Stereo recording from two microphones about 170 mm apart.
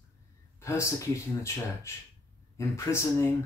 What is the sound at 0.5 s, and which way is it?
Speech, 15° left (ahead or behind).